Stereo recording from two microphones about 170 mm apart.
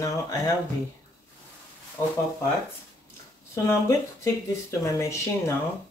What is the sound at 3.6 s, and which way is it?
Speech, 15° left (ahead or behind).